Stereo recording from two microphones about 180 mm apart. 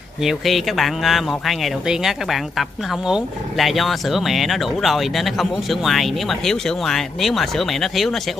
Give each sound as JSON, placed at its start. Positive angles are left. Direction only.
{"t": 0.2, "sound": "speech", "side_deg": 0}